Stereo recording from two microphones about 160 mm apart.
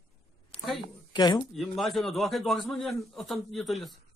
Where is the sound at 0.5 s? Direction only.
35° left (ahead or behind).